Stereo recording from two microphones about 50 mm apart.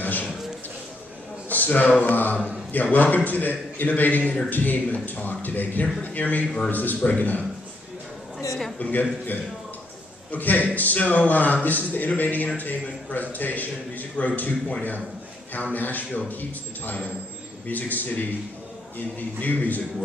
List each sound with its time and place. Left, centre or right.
0.0 s a sound: left
1.5 s a man's voice: left
8.7 s a man's voice: left
10.3 s a man's voice: left